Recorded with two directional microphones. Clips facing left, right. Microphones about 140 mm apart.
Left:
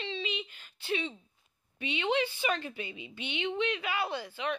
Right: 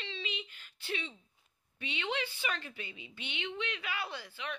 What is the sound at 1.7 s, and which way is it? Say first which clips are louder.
Speech: left 7 dB; 20° left (ahead or behind).